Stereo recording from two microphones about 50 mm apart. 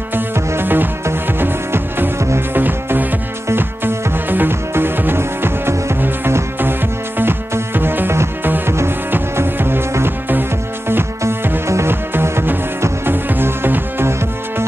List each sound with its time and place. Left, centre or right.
0.6 s music: right
5.9 s music: right
7.7 s music: right
11.6 s music: right
11.9 s music: right